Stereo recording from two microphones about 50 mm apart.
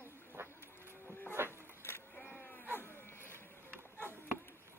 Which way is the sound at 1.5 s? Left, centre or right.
Left.